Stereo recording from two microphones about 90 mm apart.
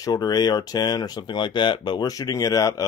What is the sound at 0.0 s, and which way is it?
Speech, 45° left (ahead or behind).